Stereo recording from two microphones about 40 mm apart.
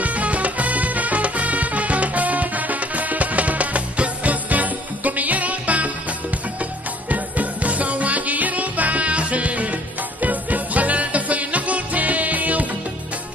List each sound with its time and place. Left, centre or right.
0.0 s music: right